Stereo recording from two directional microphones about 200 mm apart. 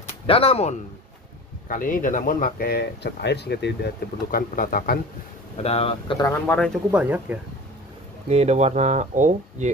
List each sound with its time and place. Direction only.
0.3 s speech: 30° left (ahead or behind)
1.7 s speech: 40° left (ahead or behind)
5.6 s speech: 30° left (ahead or behind)
6.1 s speech: 10° left (ahead or behind)
6.9 s speech: 5° right (ahead or behind)
8.3 s speech: 35° right (ahead or behind)